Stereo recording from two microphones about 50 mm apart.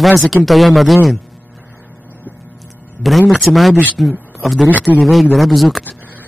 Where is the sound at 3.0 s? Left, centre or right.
Centre.